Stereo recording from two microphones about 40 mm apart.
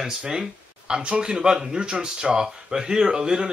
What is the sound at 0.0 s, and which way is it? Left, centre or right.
Speech, centre.